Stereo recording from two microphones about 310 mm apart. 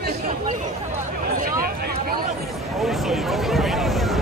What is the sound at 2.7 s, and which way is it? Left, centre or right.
Speech, centre.